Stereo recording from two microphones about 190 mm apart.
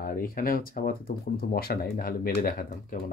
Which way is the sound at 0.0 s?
50° left (ahead or behind).